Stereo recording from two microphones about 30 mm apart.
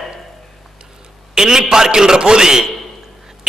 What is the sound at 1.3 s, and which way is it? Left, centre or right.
A man's voice, centre.